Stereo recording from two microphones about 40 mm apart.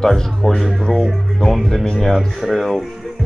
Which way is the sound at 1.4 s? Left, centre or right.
Left.